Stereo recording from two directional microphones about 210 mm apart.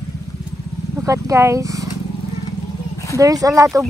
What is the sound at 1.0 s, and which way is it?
Speech, 15° right (ahead or behind).